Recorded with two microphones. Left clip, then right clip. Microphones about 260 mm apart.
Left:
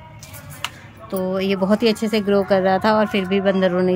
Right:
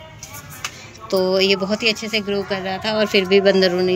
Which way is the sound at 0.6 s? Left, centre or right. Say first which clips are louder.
Right 2 dB; centre.